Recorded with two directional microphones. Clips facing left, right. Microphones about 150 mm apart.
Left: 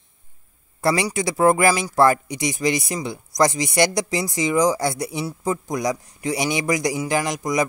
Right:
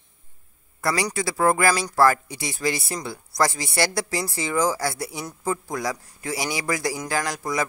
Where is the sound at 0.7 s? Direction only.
25° left (ahead or behind).